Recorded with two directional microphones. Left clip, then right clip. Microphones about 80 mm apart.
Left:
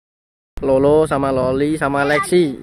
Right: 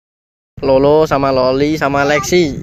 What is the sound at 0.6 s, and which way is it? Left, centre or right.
Speech, centre.